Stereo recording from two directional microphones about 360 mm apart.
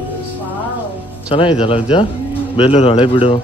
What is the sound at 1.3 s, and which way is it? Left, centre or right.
Speech, centre.